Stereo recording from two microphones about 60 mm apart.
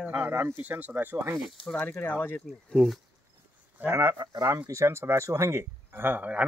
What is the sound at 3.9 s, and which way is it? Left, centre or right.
A man's voice, right.